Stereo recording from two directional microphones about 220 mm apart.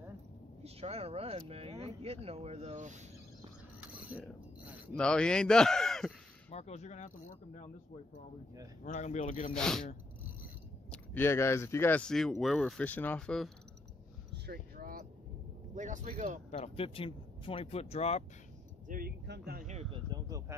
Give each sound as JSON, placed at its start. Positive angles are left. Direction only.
{"t": 0.7, "sound": "speech", "side_deg": -25}
{"t": 3.8, "sound": "mechanisms", "side_deg": -5}
{"t": 4.9, "sound": "speech", "side_deg": 5}
{"t": 6.5, "sound": "speech", "side_deg": 30}
{"t": 8.8, "sound": "speech", "side_deg": 35}
{"t": 9.5, "sound": "speech", "side_deg": 5}
{"t": 10.9, "sound": "speech", "side_deg": 10}
{"t": 14.3, "sound": "vehicle", "side_deg": -50}
{"t": 15.7, "sound": "speech", "side_deg": -35}
{"t": 16.4, "sound": "speech", "side_deg": 30}
{"t": 18.9, "sound": "speech", "side_deg": -40}
{"t": 19.7, "sound": "speech", "side_deg": -25}